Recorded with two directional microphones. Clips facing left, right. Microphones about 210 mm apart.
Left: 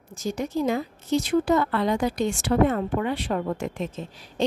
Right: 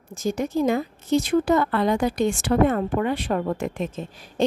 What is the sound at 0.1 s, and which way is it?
A woman's voice, 50° right (ahead or behind).